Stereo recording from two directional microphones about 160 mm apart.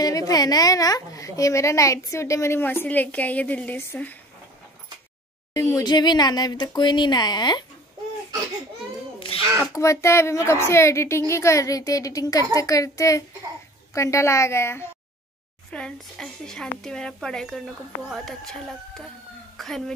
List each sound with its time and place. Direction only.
0.0 s a woman's voice: 25° left (ahead or behind)
5.5 s a woman's voice: 20° left (ahead or behind)
9.3 s a sound: 35° left (ahead or behind)
9.7 s a woman's voice: 20° left (ahead or behind)
15.7 s a child's voice: 5° left (ahead or behind)